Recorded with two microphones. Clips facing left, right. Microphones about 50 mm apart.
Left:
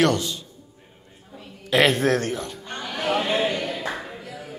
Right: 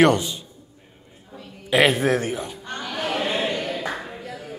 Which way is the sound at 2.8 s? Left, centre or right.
Centre.